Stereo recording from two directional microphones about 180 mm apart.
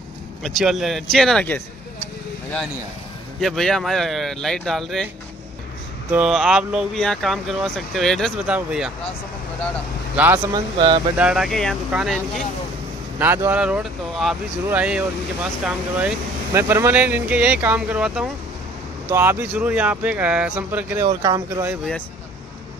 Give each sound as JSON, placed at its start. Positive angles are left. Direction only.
{"t": 0.4, "sound": "speech", "side_deg": 0}
{"t": 3.3, "sound": "speech", "side_deg": 0}
{"t": 6.1, "sound": "speech", "side_deg": -5}
{"t": 10.1, "sound": "speech", "side_deg": -10}
{"t": 10.5, "sound": "speech", "side_deg": -25}
{"t": 11.1, "sound": "speech", "side_deg": -5}